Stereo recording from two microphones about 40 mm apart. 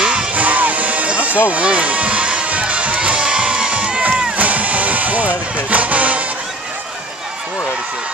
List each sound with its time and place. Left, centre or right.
0.0 s music: right
1.5 s crowd: right
4.4 s vehicle: right